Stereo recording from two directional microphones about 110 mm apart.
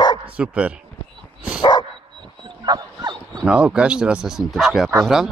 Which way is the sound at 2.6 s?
40° right (ahead or behind).